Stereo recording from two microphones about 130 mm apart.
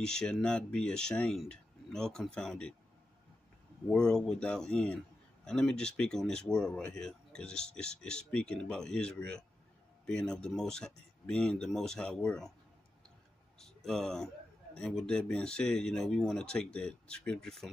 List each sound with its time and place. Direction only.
0.0 s a man's voice: 5° left (ahead or behind)
3.9 s a man's voice: 5° left (ahead or behind)
13.6 s a man's voice: 5° left (ahead or behind)